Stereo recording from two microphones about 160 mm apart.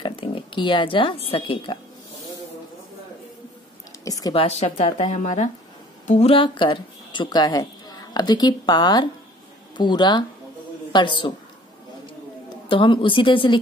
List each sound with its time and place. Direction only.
0.0 s speech: 30° left (ahead or behind)
4.0 s a sound: 20° left (ahead or behind)
4.3 s speech: 40° left (ahead or behind)
12.6 s speech: 30° left (ahead or behind)